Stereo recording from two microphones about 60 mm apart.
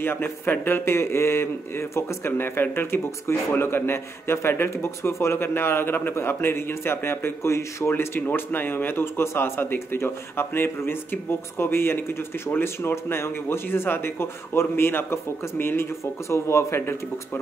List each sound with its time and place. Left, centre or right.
0.0 s a man's voice: left
0.9 s a man's voice: left
8.0 s a man's voice: left